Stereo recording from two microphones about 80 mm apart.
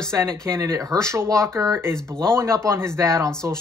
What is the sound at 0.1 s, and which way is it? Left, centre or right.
Speech, right.